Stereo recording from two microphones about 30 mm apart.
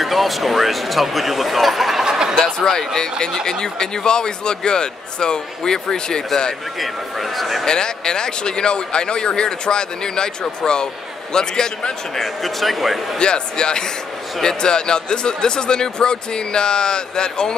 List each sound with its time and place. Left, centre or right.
0.0 s speech: centre
2.0 s a sound: right
2.3 s speech: centre
6.8 s speech: centre
7.6 s speech: left
12.2 s speech: centre
13.2 s speech: left